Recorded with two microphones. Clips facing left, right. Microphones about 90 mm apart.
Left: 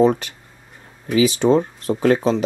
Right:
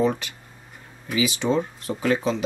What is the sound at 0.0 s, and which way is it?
Speech, 40° left (ahead or behind).